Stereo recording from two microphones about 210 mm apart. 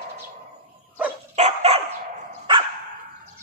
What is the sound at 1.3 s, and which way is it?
Dog, 30° right (ahead or behind).